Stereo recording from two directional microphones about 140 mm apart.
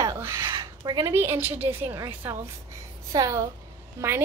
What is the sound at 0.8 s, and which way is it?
Speech, 30° right (ahead or behind).